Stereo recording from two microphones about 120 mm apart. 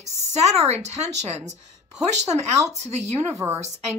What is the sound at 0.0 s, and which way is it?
Speech, 65° right (ahead or behind).